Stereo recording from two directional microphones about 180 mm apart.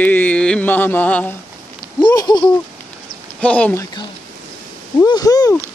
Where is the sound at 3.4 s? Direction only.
10° left (ahead or behind).